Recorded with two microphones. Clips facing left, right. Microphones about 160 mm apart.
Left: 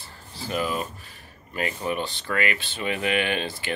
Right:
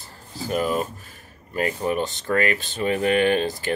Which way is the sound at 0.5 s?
45° right (ahead or behind).